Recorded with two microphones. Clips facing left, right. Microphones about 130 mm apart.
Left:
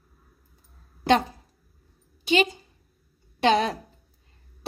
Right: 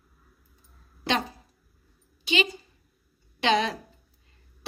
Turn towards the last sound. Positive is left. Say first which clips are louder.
# left 3 dB
turn(degrees=45)  # may be behind; listen again after turning